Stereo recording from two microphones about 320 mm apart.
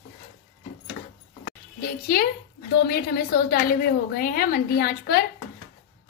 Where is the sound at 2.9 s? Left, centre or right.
Left.